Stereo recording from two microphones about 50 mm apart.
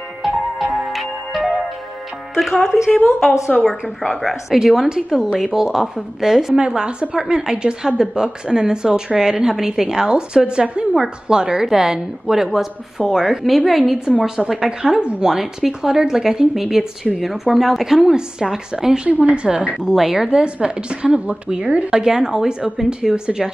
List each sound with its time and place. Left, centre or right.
0.2 s music: centre
2.3 s speech: centre
4.1 s speech: centre
4.6 s a woman's voice: centre
15.3 s a woman's voice: centre
19.0 s a woman's voice: right